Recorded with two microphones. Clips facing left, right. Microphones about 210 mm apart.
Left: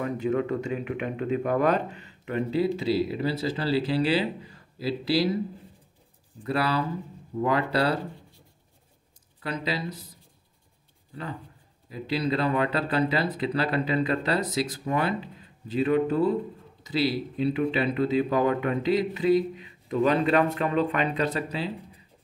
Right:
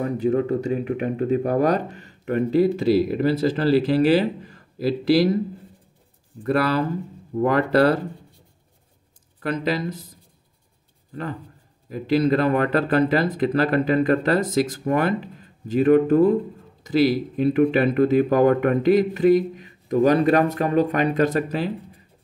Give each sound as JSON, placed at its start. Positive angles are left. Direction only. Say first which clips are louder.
{"t": 0.0, "sound": "speech", "louder": "right 5 dB", "side_deg": -35}
{"t": 6.4, "sound": "speech", "louder": "right 6 dB", "side_deg": -50}
{"t": 9.4, "sound": "speech", "louder": "right 7 dB", "side_deg": -50}
{"t": 11.9, "sound": "speech", "louder": "right 8 dB", "side_deg": -50}